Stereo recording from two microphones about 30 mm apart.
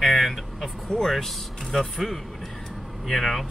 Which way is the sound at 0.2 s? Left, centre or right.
Centre.